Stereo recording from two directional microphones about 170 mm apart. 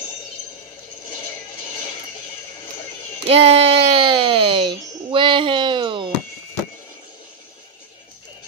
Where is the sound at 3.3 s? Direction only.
35° right (ahead or behind).